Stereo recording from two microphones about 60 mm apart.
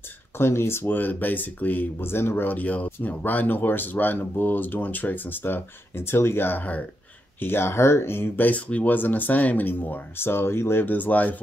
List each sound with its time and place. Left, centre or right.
0.4 s speech: left
8.5 s speech: left